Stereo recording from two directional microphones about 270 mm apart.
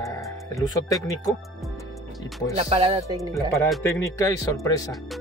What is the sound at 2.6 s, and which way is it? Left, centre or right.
Speech, right.